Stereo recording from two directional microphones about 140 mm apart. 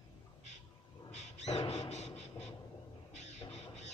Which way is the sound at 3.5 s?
50° left (ahead or behind).